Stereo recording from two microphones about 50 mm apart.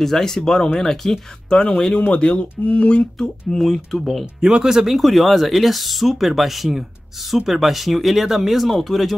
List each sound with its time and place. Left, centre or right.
0.0 s speech: centre
2.1 s speech: left
2.5 s speech: left
3.2 s speech: centre
4.4 s speech: centre